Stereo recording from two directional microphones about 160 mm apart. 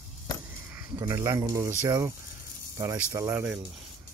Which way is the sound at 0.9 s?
20° right (ahead or behind).